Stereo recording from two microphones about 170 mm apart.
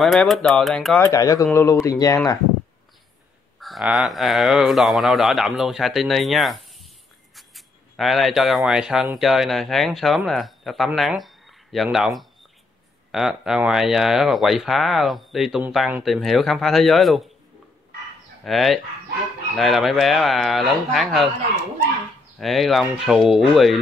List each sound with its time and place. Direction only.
0.0 s speech: centre (ahead or behind)
0.9 s speech: 15° left (ahead or behind)
3.5 s speech: centre (ahead or behind)
18.4 s speech: centre (ahead or behind)
22.4 s speech: centre (ahead or behind)